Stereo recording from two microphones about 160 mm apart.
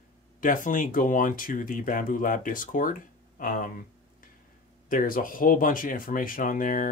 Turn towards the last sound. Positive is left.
turn(degrees=55)  # may be behind; listen again after turning